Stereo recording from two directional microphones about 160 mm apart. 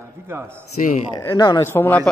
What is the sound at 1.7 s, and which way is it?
Speech, 10° left (ahead or behind).